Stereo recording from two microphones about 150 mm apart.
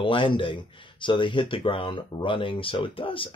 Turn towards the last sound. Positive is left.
turn(degrees=35)  # may be behind; listen again after turning